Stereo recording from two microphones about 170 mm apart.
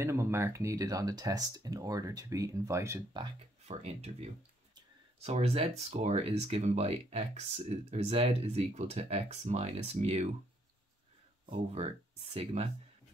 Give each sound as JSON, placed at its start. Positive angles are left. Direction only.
{"t": 0.0, "sound": "speech", "side_deg": -15}
{"t": 3.6, "sound": "speech", "side_deg": -40}
{"t": 11.4, "sound": "speech", "side_deg": -35}